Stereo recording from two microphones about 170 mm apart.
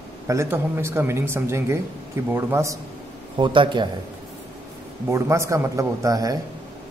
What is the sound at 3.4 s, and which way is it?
Speech, 30° right (ahead or behind).